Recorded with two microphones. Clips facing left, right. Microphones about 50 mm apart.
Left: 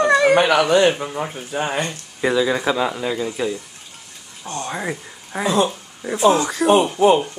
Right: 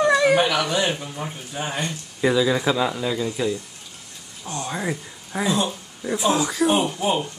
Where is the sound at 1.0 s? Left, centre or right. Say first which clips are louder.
Left 6 dB; left.